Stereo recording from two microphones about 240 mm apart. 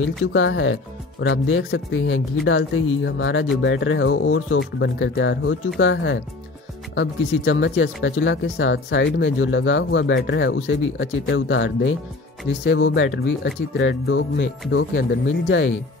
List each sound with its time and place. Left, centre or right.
0.3 s speech: left